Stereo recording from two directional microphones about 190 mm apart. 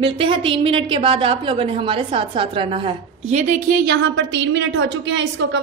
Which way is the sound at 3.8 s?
60° right (ahead or behind).